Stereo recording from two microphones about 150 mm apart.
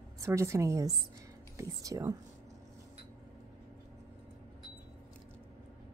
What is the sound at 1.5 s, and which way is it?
Speech, 20° right (ahead or behind).